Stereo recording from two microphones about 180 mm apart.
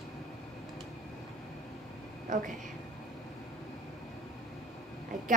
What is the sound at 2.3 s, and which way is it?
Speech, 45° right (ahead or behind).